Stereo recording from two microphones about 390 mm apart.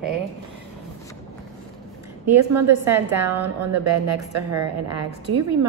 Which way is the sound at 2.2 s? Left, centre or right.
Right.